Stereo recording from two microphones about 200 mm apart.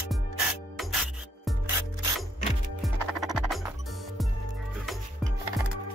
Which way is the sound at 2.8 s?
Centre (ahead or behind).